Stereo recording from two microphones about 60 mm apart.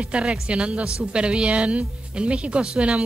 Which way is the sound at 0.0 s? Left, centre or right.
Centre.